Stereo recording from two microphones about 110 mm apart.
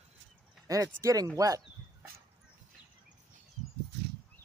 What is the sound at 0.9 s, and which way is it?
Speech, 30° right (ahead or behind).